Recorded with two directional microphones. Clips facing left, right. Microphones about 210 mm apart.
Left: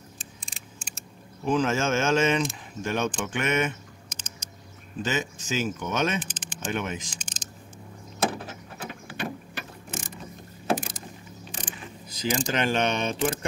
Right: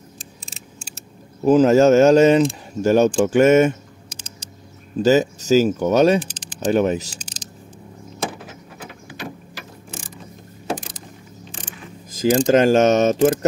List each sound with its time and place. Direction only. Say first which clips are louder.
1.4 s speech: right 12 dB; 40° right (ahead or behind)
5.0 s speech: right 14 dB; 40° right (ahead or behind)
12.1 s speech: right 13 dB; 50° right (ahead or behind)